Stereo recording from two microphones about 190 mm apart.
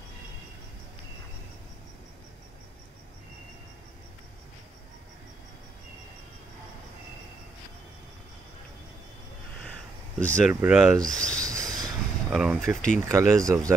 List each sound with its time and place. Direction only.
10.2 s speech: 5° left (ahead or behind)
10.5 s speech: 10° right (ahead or behind)
11.1 s speech: 5° left (ahead or behind)
11.4 s train: 20° right (ahead or behind)
12.3 s speech: 5° right (ahead or behind)